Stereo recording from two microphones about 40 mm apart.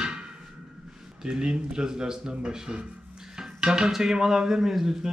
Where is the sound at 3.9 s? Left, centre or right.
Centre.